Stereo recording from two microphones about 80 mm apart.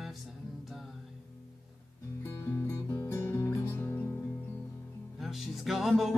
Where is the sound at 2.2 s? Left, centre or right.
Left.